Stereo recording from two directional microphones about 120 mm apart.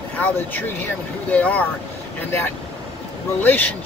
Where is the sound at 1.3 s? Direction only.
15° left (ahead or behind).